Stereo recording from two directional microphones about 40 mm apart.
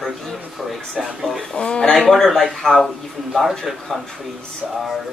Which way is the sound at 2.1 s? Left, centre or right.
Centre.